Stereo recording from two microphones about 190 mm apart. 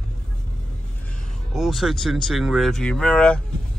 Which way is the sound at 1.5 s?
Centre (ahead or behind).